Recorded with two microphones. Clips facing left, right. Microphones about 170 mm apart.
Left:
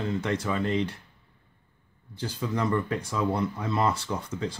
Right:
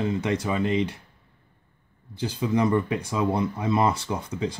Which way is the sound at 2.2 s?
15° right (ahead or behind).